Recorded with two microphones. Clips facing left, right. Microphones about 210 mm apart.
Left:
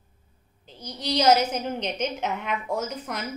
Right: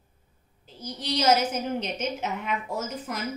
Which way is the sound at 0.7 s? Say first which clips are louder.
Left 3 dB; 5° right (ahead or behind).